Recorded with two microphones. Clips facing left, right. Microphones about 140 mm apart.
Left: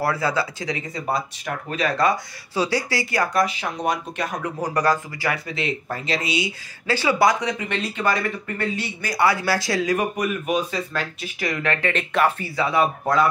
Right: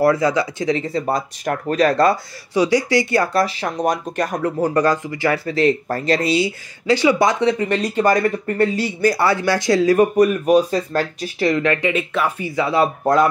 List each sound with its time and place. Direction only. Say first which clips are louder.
0.0 s speech: right 7 dB; 20° right (ahead or behind)
1.1 s speech: right 5 dB; 45° right (ahead or behind)
2.5 s speech: right 7 dB; 15° right (ahead or behind); by 4.6 s 40° right (ahead or behind)
4.7 s speech: right 4 dB; 25° right (ahead or behind)
6.9 s speech: right 4 dB; 20° right (ahead or behind); by 9.1 s 40° right (ahead or behind)
9.3 s speech: right 5 dB; 25° right (ahead or behind)
9.9 s speech: right 9 dB; 35° right (ahead or behind); by 12.3 s 5° right (ahead or behind)
12.4 s speech: right 3 dB; 15° right (ahead or behind)